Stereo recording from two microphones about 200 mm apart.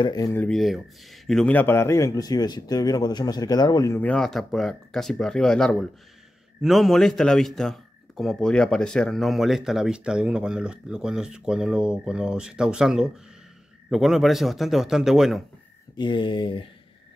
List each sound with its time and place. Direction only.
0.0 s speech: 15° left (ahead or behind); by 15.4 s centre (ahead or behind)
16.0 s speech: 25° left (ahead or behind)